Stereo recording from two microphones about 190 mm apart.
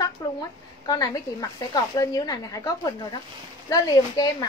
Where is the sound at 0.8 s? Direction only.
20° left (ahead or behind).